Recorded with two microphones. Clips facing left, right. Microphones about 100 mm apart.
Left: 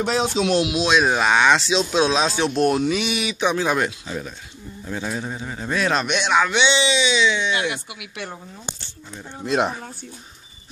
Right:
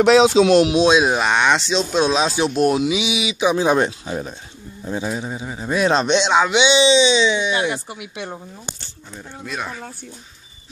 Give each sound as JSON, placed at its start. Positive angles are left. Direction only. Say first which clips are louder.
{"t": 0.0, "sound": "speech", "louder": "right 9 dB", "side_deg": -90}
{"t": 0.9, "sound": "speech", "louder": "right 2 dB", "side_deg": -10}
{"t": 1.2, "sound": "speech", "louder": "even", "side_deg": 0}
{"t": 3.5, "sound": "a man's voice", "louder": "right 4 dB", "side_deg": -25}
{"t": 4.8, "sound": "a man's voice", "louder": "right 3 dB", "side_deg": -15}